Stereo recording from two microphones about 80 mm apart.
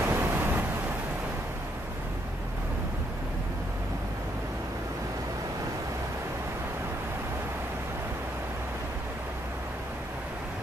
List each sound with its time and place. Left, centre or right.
0.0 s waves: right